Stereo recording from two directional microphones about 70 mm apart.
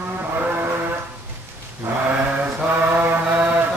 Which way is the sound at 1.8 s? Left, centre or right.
Right.